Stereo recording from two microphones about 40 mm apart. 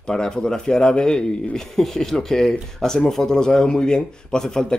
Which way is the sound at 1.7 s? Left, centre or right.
Centre.